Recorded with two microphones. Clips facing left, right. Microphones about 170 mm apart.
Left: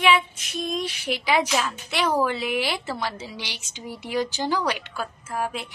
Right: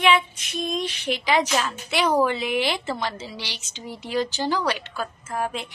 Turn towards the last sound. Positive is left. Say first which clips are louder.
# right 1 dB
turn(degrees=5)  # may be behind; listen again after turning